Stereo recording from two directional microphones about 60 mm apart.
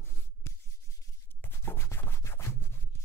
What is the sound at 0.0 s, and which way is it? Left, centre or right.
Writing, left.